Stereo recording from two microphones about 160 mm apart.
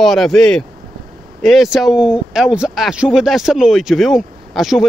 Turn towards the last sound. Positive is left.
turn(degrees=0)  # may be behind; listen again after turning